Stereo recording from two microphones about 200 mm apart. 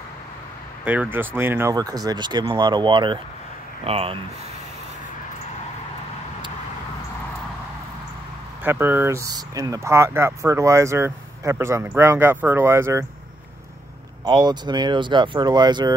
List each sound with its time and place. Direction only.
1.1 s speech: 10° right (ahead or behind); by 4.2 s 30° right (ahead or behind)
8.6 s speech: 10° right (ahead or behind)
14.2 s speech: 20° right (ahead or behind)